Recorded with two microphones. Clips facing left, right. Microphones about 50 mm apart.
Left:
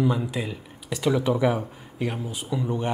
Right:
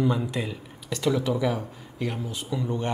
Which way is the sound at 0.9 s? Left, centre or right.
Centre.